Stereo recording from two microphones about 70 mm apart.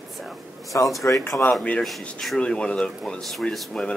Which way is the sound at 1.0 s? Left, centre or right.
Left.